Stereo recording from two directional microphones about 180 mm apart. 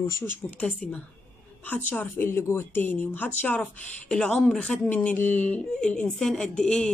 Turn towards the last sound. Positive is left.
turn(degrees=5)  # may be behind; listen again after turning